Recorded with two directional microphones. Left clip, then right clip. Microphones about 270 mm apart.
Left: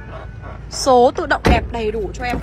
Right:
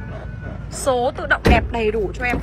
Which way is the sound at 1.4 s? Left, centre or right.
Centre.